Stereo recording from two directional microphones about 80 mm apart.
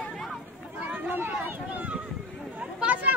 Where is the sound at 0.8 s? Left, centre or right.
Centre.